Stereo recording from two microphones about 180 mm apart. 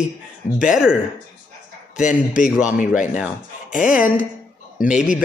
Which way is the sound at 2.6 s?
45° left (ahead or behind).